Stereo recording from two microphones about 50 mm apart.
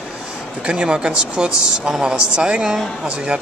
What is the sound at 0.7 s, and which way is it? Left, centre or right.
A woman's voice, centre.